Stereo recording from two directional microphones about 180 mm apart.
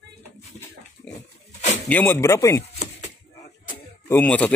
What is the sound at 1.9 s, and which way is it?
Speech, 10° left (ahead or behind).